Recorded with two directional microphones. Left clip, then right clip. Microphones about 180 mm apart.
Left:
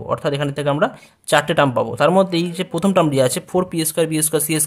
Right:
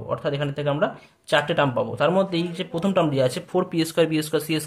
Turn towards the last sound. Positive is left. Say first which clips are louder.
# left 4 dB
turn(degrees=35)  # may be behind; listen again after turning